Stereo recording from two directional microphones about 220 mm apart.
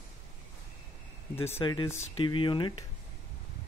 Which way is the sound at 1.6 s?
15° left (ahead or behind).